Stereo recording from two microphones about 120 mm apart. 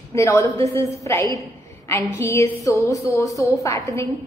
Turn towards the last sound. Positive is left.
turn(degrees=25)  # may be behind; listen again after turning